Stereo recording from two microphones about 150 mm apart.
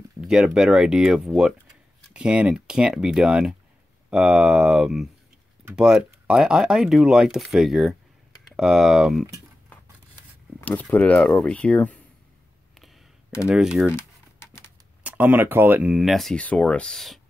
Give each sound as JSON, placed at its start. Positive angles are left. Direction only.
{"t": 0.2, "sound": "speech", "side_deg": -5}
{"t": 10.6, "sound": "speech", "side_deg": 10}
{"t": 13.5, "sound": "speech", "side_deg": -5}
{"t": 13.9, "sound": "typing", "side_deg": 20}
{"t": 15.0, "sound": "speech", "side_deg": -10}